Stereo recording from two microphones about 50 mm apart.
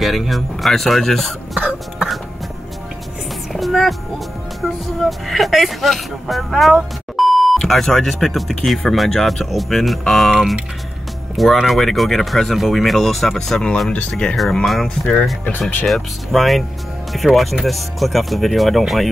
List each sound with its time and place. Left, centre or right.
0.0 s speech: centre
1.6 s cough: right
3.5 s speech: centre
11.5 s speech: centre